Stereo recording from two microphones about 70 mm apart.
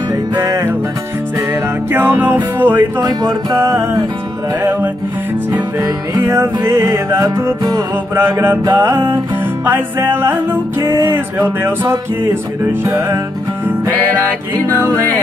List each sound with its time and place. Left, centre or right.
0.4 s music: right
1.9 s music: right
3.5 s music: right
6.2 s music: right
8.2 s music: right
10.8 s music: right
11.1 s music: right
14.7 s music: right